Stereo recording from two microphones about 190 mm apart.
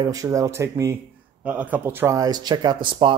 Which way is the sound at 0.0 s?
20° right (ahead or behind).